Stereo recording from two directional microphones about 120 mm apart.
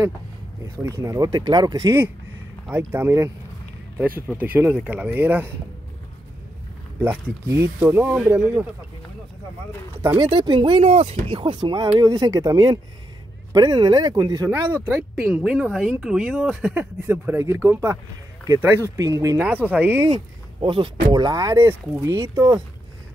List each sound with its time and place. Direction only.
0.7 s speech: 25° right (ahead or behind)
2.7 s speech: 20° right (ahead or behind)
4.4 s speech: 15° right (ahead or behind)
7.0 s speech: 15° right (ahead or behind)
10.0 s speech: 35° right (ahead or behind); by 11.1 s 55° right (ahead or behind)
11.2 s speech: 45° right (ahead or behind)
12.0 s speech: 30° right (ahead or behind)
14.9 s speech: 15° right (ahead or behind)
15.4 s speech: centre (ahead or behind); by 19.4 s 25° right (ahead or behind)
19.4 s speech: 15° right (ahead or behind)
20.6 s speech: 45° right (ahead or behind); by 22.6 s 25° right (ahead or behind)